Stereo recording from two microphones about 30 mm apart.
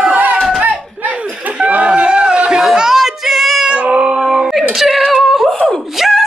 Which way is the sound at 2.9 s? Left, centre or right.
Centre.